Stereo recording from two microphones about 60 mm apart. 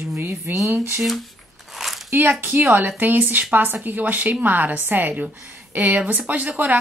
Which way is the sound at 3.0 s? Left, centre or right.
Right.